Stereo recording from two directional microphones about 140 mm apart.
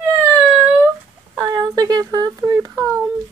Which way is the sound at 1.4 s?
25° right (ahead or behind).